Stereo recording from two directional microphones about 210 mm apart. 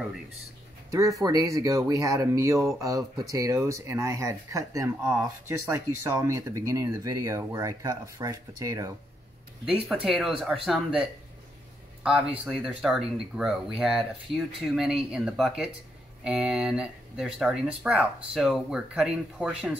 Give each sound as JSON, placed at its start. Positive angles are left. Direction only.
{"t": 1.2, "sound": "speech", "side_deg": -15}
{"t": 9.8, "sound": "speech", "side_deg": 0}